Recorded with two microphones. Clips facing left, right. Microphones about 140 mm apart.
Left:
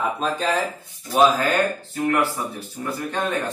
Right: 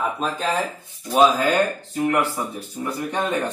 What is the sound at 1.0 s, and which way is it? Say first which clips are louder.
Speech: right 1 dB; 15° right (ahead or behind).